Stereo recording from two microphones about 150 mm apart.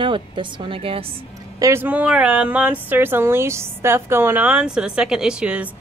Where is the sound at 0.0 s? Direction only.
35° right (ahead or behind).